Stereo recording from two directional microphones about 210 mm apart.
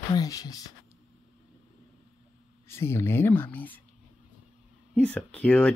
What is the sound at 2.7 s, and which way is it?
Speech, 10° left (ahead or behind).